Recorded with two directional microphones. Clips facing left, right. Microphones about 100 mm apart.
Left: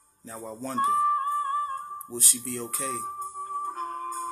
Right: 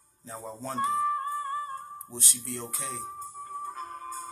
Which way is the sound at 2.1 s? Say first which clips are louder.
Left 4 dB; 20° right (ahead or behind).